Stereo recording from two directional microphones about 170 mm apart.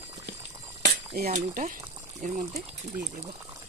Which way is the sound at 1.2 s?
45° right (ahead or behind).